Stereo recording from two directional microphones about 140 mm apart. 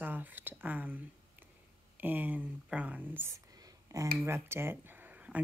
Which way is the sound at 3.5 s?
25° right (ahead or behind).